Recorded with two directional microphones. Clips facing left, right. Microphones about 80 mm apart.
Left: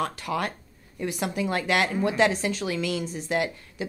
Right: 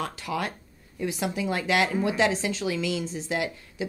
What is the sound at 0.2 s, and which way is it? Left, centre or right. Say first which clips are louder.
Speech: left 2 dB; left.